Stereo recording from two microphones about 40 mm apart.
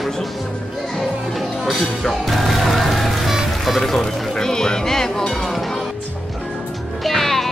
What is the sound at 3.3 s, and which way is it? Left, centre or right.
Music, centre.